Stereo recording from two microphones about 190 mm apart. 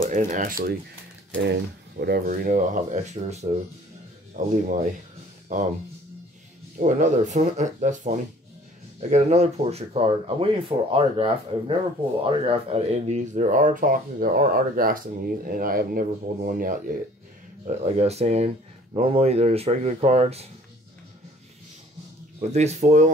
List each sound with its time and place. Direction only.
0.1 s speech: 40° right (ahead or behind)
1.3 s speech: 65° right (ahead or behind); by 5.7 s 40° right (ahead or behind)
6.8 s speech: 40° right (ahead or behind)
17.6 s speech: 35° right (ahead or behind)
22.5 s speech: 35° right (ahead or behind)